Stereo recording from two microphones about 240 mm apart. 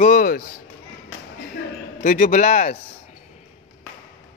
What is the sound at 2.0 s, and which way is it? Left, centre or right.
Speech, left.